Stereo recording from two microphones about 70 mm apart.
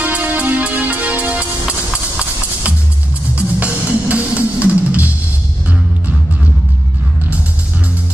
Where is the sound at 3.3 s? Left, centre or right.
Centre.